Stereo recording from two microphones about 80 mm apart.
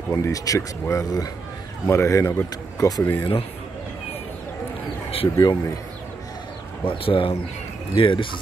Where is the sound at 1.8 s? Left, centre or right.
Left.